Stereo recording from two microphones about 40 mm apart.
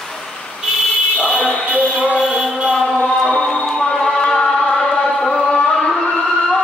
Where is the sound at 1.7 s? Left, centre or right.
Right.